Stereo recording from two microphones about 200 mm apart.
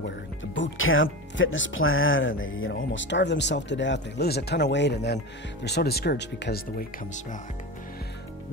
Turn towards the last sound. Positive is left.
turn(degrees=50)  # may be behind; listen again after turning